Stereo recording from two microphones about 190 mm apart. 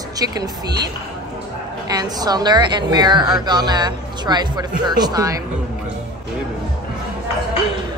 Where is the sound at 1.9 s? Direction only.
20° right (ahead or behind).